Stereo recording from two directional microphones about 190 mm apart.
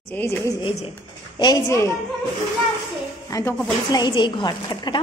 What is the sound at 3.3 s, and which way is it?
A woman's voice, 15° left (ahead or behind).